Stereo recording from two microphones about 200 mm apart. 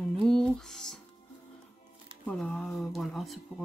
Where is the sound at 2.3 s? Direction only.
5° left (ahead or behind).